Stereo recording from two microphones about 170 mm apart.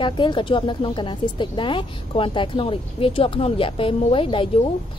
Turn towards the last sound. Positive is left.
turn(degrees=30)  # may be behind; listen again after turning